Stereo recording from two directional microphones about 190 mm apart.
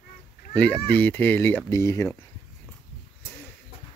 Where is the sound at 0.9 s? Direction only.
10° left (ahead or behind).